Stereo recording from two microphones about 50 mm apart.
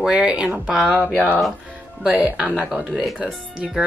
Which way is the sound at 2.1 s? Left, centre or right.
Right.